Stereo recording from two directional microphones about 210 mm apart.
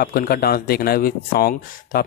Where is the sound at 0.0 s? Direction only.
45° left (ahead or behind).